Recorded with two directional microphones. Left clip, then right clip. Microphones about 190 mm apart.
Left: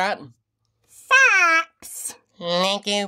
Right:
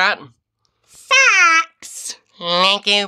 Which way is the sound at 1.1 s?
60° left (ahead or behind).